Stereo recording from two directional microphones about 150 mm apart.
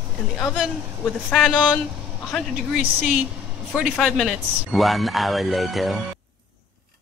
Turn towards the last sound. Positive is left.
turn(degrees=0)  # may be behind; listen again after turning